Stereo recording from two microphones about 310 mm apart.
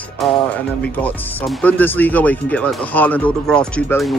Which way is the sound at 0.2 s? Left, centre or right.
Centre.